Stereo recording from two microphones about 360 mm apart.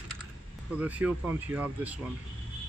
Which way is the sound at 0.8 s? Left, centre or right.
Centre.